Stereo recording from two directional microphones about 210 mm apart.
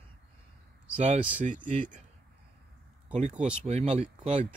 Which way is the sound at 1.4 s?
35° right (ahead or behind).